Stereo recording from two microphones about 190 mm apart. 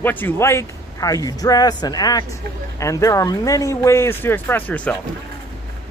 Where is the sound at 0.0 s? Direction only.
10° left (ahead or behind).